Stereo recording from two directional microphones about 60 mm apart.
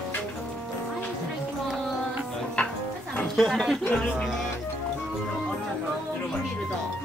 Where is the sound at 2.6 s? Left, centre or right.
Centre.